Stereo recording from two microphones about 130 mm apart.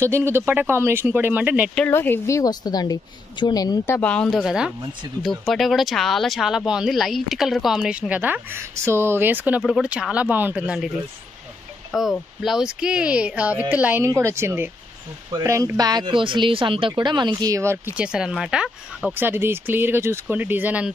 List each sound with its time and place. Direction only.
0.0 s speech: 20° right (ahead or behind)
1.9 s a woman's voice: 15° left (ahead or behind)
3.8 s speech: 15° left (ahead or behind); by 10.9 s 10° right (ahead or behind)
12.0 s speech: centre (ahead or behind); by 17.7 s 25° right (ahead or behind)
17.9 s speech: 5° right (ahead or behind)
19.1 s speech: 15° right (ahead or behind)